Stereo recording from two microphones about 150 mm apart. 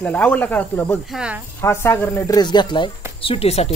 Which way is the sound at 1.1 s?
5° right (ahead or behind).